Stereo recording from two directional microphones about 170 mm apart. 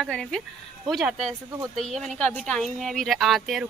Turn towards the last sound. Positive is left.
turn(degrees=0)  # may be behind; listen again after turning